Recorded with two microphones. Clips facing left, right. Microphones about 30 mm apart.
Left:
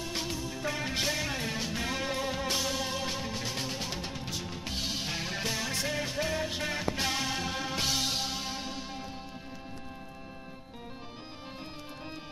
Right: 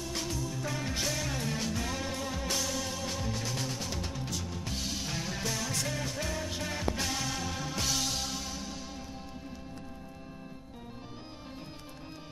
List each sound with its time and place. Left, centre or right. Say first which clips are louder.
0.0 s music: left 1 dB; left